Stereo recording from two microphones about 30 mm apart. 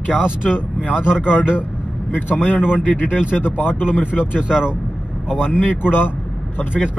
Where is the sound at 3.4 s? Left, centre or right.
Left.